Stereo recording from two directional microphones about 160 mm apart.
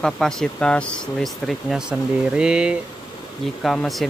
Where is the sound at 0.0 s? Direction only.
5° left (ahead or behind).